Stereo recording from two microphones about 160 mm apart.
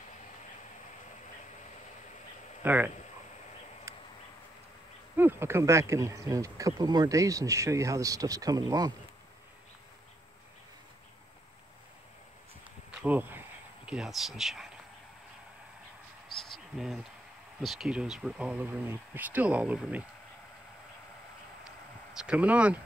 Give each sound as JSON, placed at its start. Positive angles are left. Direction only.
{"t": 2.6, "sound": "speech", "side_deg": -10}
{"t": 3.9, "sound": "a sound", "side_deg": -15}
{"t": 5.1, "sound": "speech", "side_deg": -15}
{"t": 13.0, "sound": "insect", "side_deg": -10}
{"t": 13.8, "sound": "speech", "side_deg": -5}
{"t": 16.3, "sound": "a sound", "side_deg": 0}
{"t": 17.6, "sound": "speech", "side_deg": 0}
{"t": 22.1, "sound": "speech", "side_deg": -5}